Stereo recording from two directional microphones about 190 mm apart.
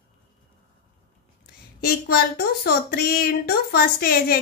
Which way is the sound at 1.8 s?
55° left (ahead or behind).